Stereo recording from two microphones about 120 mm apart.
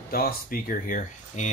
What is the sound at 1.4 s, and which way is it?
Speech, 80° left.